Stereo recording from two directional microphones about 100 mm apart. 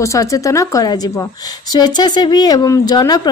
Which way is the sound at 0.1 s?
35° left (ahead or behind).